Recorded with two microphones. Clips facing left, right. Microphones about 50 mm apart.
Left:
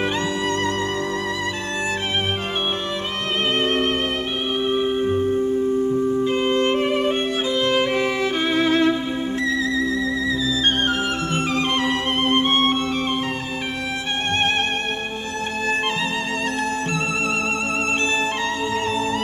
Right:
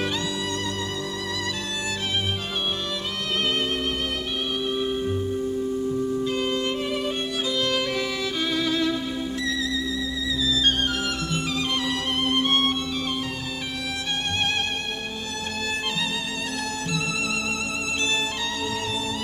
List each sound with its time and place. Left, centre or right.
3.5 s music: left
4.6 s music: left
10.4 s music: left